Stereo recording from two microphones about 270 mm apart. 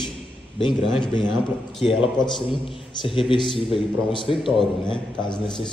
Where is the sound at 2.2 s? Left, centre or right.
Centre.